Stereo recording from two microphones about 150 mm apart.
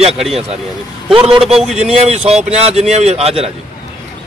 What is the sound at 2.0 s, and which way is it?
A man's voice, 45° right (ahead or behind).